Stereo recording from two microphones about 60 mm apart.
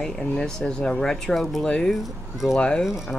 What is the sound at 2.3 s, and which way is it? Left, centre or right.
Speech, centre.